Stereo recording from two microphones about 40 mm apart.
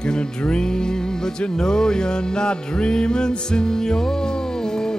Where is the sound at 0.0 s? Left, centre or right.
Left.